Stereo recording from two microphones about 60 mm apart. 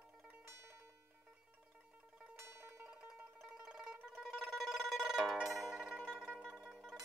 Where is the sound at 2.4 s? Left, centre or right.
Right.